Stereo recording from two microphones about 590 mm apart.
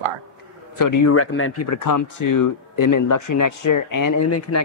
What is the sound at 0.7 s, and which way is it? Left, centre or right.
Speech, left.